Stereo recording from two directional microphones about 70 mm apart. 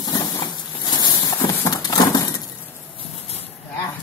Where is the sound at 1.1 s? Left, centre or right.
Left.